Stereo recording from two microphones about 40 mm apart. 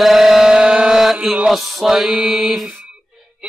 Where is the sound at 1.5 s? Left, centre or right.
Centre.